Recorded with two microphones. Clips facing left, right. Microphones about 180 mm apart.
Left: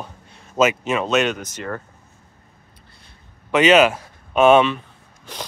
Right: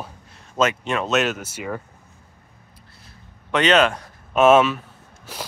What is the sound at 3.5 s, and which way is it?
Speech, 5° left (ahead or behind).